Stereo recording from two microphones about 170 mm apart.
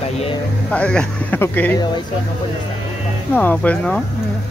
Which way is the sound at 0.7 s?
5° left (ahead or behind).